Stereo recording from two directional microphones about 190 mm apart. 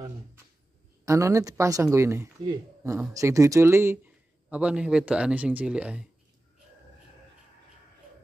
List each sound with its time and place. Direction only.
1.0 s speech: 15° right (ahead or behind)